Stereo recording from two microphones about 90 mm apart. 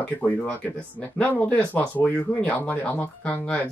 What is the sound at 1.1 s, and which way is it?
Speech, 15° left (ahead or behind).